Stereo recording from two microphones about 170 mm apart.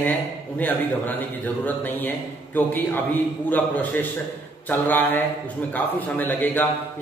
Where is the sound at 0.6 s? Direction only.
10° left (ahead or behind).